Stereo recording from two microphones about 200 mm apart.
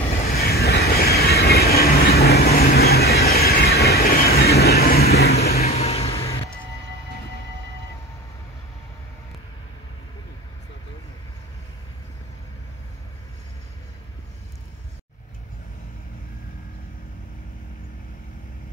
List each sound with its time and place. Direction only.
0.3 s train: 50° left (ahead or behind)
5.6 s vehicle: 30° left (ahead or behind)